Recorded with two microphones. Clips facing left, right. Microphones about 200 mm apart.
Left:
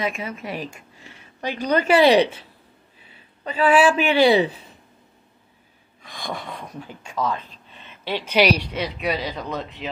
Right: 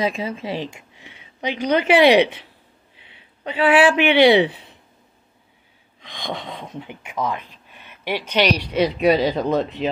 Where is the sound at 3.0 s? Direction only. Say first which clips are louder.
Right 2 dB; 80° right.